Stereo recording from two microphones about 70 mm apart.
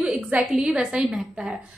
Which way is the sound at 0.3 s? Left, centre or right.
Centre.